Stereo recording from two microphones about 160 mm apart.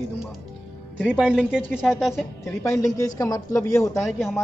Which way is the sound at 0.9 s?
5° right (ahead or behind).